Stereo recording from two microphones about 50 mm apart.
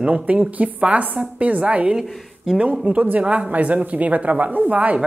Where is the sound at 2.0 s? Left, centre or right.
Centre.